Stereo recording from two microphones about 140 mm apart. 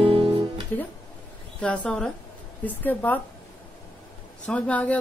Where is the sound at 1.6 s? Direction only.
10° left (ahead or behind).